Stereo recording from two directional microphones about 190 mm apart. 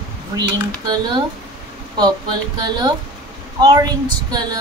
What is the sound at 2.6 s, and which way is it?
A woman's voice, 20° right (ahead or behind).